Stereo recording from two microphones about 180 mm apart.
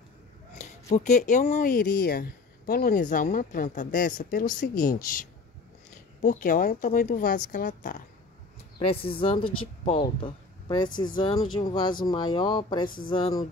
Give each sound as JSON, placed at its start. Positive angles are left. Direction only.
{"t": 0.6, "sound": "speech", "side_deg": 40}
{"t": 6.2, "sound": "speech", "side_deg": 50}
{"t": 8.7, "sound": "speech", "side_deg": 30}